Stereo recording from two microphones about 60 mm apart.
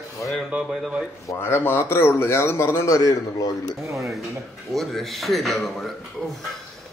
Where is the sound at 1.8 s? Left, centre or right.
Left.